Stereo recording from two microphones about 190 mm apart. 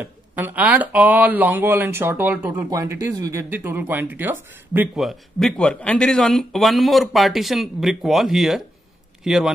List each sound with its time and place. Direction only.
0.0 s speech: 10° right (ahead or behind)